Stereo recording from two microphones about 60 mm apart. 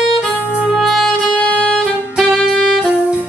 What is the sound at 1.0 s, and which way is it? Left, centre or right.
Music, centre.